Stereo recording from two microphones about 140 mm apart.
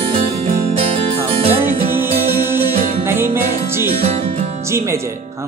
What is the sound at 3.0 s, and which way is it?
Music, 15° right (ahead or behind).